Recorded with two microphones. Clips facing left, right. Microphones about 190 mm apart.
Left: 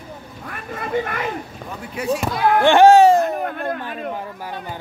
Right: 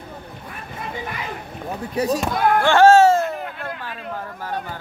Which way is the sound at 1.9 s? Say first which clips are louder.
Right 1 dB; 40° right (ahead or behind).